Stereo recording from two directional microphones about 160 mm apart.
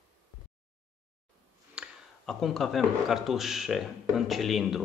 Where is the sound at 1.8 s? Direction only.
Centre (ahead or behind).